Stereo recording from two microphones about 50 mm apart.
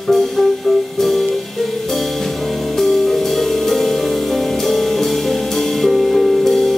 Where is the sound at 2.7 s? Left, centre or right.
Centre.